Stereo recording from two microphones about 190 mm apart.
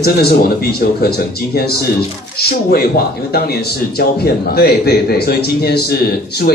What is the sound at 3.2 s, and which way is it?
Speech, 55° left (ahead or behind).